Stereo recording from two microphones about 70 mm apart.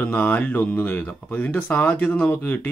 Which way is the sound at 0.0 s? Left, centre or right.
Left.